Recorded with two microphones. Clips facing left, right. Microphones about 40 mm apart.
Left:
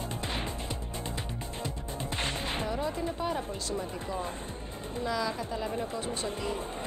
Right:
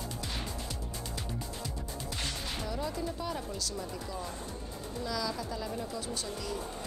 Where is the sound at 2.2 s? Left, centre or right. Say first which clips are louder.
Left 5 dB; left.